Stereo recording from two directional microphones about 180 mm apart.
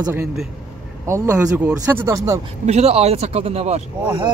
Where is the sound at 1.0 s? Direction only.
15° right (ahead or behind).